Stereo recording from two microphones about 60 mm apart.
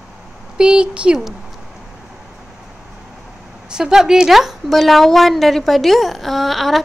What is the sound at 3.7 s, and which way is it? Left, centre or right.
Speech, centre.